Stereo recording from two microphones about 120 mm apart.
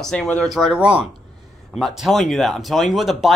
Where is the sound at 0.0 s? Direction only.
5° left (ahead or behind).